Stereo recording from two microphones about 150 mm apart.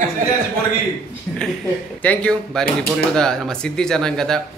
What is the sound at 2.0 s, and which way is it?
Speech, 10° left (ahead or behind).